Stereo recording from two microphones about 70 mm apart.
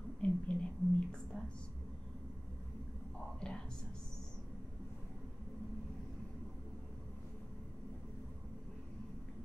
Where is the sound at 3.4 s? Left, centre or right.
Centre.